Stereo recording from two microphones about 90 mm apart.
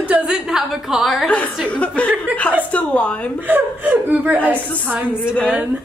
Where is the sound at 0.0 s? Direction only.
15° right (ahead or behind).